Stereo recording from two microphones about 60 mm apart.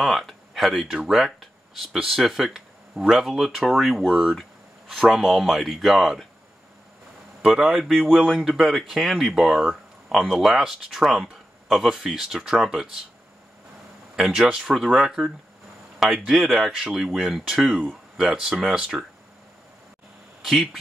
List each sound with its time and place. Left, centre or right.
0.0 s speech: centre
4.1 s speech: centre
7.4 s speech: centre
8.4 s speech: centre
14.1 s speech: centre
16.3 s speech: centre
18.1 s speech: centre
20.4 s speech: centre